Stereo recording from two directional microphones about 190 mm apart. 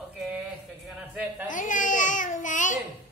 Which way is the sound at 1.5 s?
45° left (ahead or behind).